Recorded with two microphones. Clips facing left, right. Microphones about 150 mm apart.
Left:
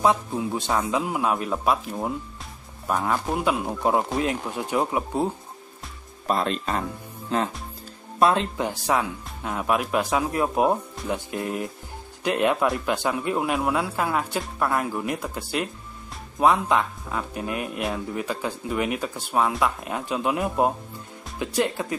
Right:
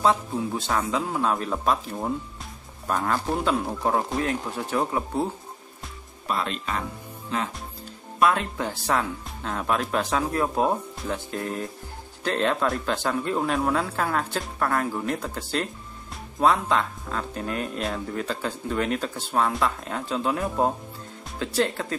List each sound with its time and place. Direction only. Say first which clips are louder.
0.0 s speech: left 1 dB; 15° left (ahead or behind)
6.2 s speech: left 4 dB; 40° left (ahead or behind)
8.2 s speech: left 2 dB; 25° left (ahead or behind)